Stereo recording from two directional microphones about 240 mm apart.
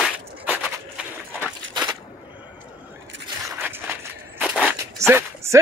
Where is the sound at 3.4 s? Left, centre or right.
Centre.